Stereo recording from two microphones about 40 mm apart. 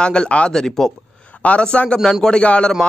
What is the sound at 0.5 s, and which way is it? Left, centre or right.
Speech, centre.